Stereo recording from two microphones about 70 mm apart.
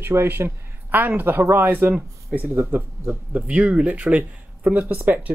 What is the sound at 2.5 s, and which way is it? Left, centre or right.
Speech, right.